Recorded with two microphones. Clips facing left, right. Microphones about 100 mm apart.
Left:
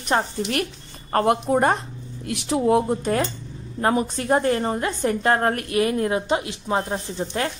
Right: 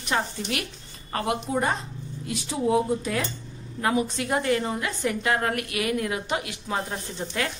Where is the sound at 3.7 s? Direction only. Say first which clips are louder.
Left 3 dB; 40° left (ahead or behind).